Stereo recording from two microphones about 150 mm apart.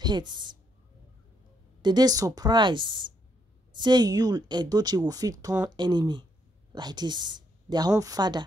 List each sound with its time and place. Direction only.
0.0 s a woman's voice: 30° right (ahead or behind)
1.8 s speech: 30° right (ahead or behind)